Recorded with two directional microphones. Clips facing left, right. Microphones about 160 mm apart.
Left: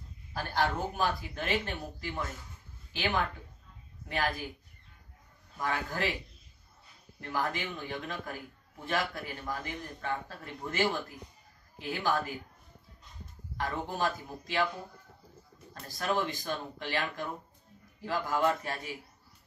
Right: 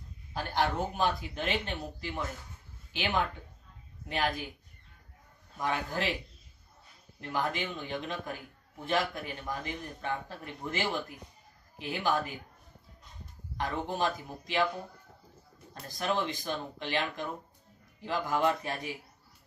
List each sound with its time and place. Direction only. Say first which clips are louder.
0.3 s speech: right 1 dB; 20° right (ahead or behind)
5.6 s speech: right 1 dB; 20° right (ahead or behind)
7.2 s a man's voice: right 1 dB; 20° right (ahead or behind)
13.6 s speech: right 1 dB; 20° right (ahead or behind)
15.7 s a man's voice: even; 20° right (ahead or behind)